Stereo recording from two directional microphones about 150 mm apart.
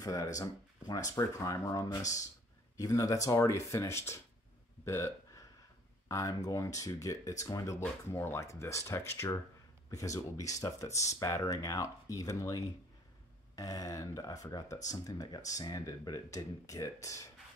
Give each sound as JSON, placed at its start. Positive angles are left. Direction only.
{"t": 0.0, "sound": "speech", "side_deg": 25}
{"t": 4.8, "sound": "a sound", "side_deg": 15}
{"t": 6.0, "sound": "speech", "side_deg": 20}